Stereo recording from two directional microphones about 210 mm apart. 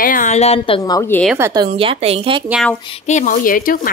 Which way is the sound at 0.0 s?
40° left (ahead or behind).